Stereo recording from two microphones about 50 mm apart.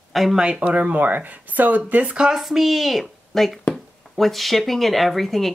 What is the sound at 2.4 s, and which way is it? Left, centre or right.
Speech, centre.